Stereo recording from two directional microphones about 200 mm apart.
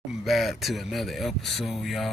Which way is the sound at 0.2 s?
Centre (ahead or behind).